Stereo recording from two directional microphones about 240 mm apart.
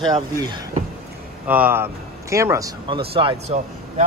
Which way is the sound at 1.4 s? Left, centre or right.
Centre.